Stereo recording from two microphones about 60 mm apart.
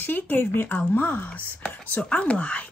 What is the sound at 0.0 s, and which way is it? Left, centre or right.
Speech, left.